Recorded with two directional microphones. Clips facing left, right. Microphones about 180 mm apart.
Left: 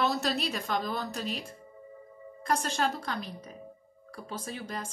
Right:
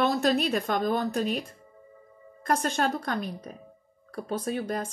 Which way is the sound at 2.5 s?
55° right (ahead or behind).